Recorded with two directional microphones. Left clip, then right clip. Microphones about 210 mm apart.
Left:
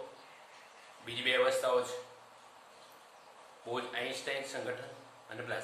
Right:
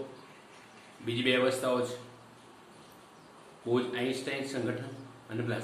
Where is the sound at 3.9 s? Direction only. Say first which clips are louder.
Right 3 dB; 10° left (ahead or behind).